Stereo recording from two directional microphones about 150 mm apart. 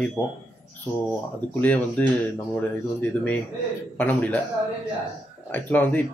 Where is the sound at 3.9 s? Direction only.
10° left (ahead or behind).